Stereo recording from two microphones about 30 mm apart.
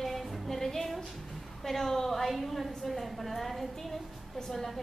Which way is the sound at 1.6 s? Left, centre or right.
Centre.